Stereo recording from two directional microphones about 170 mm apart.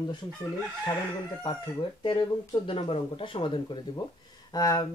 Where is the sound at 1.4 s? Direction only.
30° left (ahead or behind).